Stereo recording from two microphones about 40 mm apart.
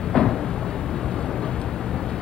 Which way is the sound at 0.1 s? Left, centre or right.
Centre.